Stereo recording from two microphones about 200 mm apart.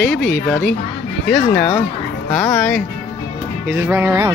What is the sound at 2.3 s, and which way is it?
Speech, centre (ahead or behind).